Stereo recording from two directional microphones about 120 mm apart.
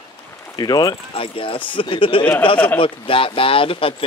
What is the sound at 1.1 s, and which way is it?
Speech, 50° left (ahead or behind).